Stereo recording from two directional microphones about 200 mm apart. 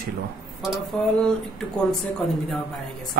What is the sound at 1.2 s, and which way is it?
Speech, 5° left (ahead or behind).